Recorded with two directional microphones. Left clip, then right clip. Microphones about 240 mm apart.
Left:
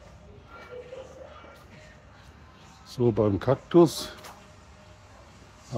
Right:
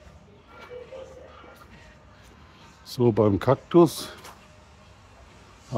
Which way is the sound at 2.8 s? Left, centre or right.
Right.